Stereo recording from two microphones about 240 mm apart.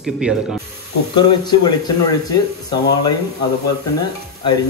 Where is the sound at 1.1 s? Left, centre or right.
Centre.